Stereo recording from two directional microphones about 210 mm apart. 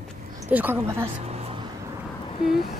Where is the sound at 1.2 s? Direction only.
30° right (ahead or behind).